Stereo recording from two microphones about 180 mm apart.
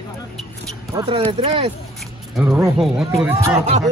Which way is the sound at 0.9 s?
30° right (ahead or behind).